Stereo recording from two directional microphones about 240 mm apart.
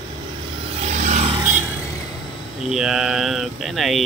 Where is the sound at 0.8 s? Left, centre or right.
Right.